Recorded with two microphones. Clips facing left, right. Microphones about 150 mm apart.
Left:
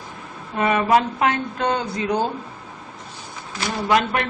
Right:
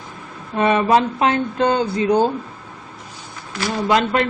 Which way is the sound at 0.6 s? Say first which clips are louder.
Right 2 dB; 25° right (ahead or behind).